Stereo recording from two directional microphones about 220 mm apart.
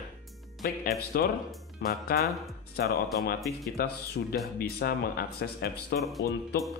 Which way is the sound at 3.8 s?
40° left (ahead or behind).